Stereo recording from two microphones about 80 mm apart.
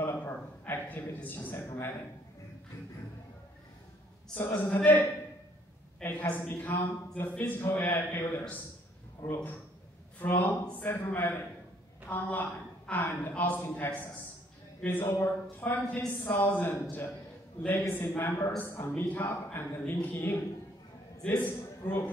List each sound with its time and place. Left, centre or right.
0.0 s a sound: left
4.6 s a woman's voice: centre
21.5 s a man's voice: left